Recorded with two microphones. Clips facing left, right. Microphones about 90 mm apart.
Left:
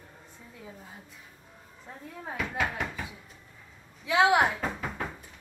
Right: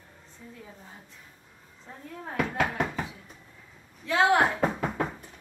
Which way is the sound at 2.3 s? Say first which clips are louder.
Right 4 dB; 55° right (ahead or behind).